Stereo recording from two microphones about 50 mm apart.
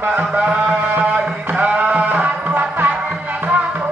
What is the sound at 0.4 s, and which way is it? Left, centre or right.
Music, right.